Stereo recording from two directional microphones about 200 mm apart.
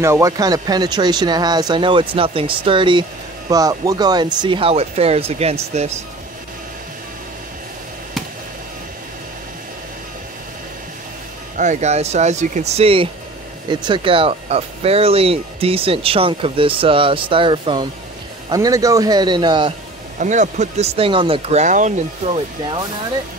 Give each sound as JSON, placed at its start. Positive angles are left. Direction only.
{"t": 0.0, "sound": "speech", "side_deg": -15}
{"t": 11.5, "sound": "speech", "side_deg": -35}
{"t": 20.2, "sound": "speech", "side_deg": -35}